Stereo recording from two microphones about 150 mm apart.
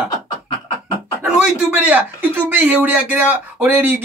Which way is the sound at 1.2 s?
5° right (ahead or behind).